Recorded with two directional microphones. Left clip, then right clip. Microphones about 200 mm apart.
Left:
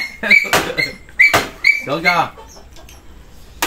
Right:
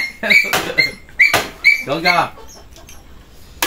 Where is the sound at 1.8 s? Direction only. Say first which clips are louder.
Even; 15° left (ahead or behind).